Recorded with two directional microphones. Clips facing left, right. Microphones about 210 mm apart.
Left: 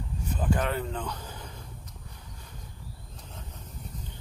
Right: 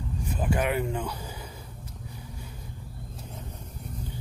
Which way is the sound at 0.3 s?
10° right (ahead or behind).